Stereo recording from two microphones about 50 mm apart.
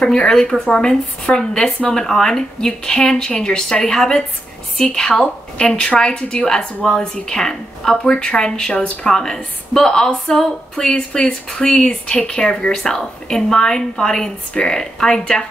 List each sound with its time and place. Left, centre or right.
0.0 s a woman's voice: centre